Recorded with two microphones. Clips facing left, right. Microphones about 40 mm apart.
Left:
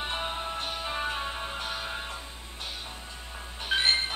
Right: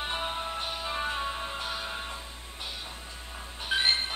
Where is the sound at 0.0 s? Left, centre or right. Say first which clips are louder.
Even; centre.